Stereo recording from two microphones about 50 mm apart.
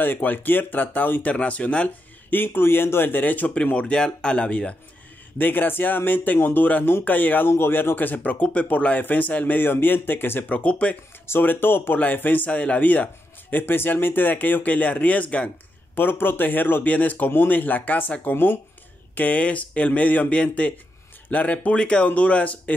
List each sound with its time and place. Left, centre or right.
0.0 s speech: left
1.3 s speech: left
2.3 s speech: left
3.7 s speech: centre
5.4 s speech: left
7.4 s speech: left
10.5 s speech: left
11.2 s speech: left
12.4 s speech: left
15.9 s speech: left
19.1 s speech: left